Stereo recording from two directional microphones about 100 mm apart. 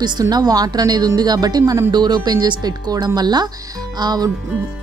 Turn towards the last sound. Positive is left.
turn(degrees=-45)  # may be behind; listen again after turning